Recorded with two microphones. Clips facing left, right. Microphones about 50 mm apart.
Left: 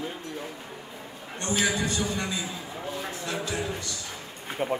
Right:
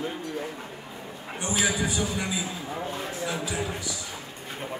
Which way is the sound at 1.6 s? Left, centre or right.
Centre.